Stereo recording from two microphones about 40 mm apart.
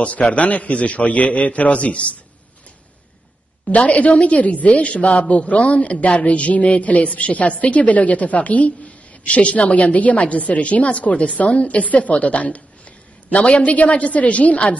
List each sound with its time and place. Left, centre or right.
0.0 s a woman's voice: left
3.6 s a woman's voice: left